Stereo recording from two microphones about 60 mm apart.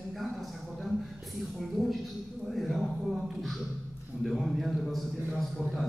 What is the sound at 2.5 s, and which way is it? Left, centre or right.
A man's voice, centre.